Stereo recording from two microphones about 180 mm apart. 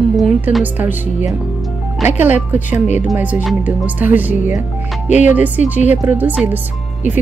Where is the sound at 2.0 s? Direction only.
10° right (ahead or behind).